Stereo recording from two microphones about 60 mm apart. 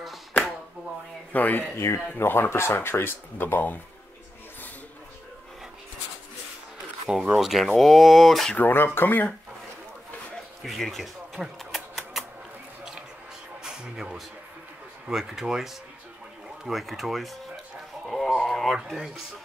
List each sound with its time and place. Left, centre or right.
1.3 s speech: left
2.1 s speech: left
7.1 s speech: centre
8.5 s speech: left
10.6 s speech: centre
11.3 s a sound: centre
13.7 s speech: centre
18.0 s a sound: centre
18.9 s speech: centre